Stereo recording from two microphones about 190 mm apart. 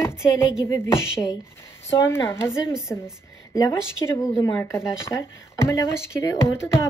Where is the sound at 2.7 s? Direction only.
Centre (ahead or behind).